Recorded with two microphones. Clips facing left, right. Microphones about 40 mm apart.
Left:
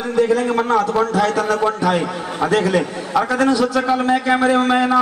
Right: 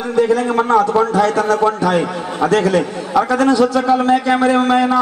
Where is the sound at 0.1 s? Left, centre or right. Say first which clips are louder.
Right 2 dB; centre.